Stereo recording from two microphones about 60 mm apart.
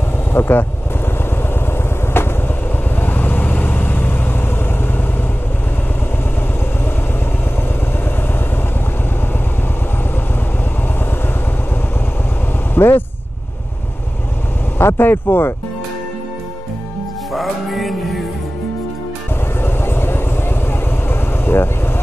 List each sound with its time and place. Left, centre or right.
0.3 s speech: left
2.1 s vehicle: left
12.7 s speech: left
14.8 s speech: left
17.3 s music: centre
19.6 s vehicle: left